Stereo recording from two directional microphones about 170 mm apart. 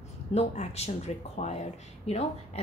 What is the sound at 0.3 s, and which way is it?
A woman's voice, 40° left (ahead or behind).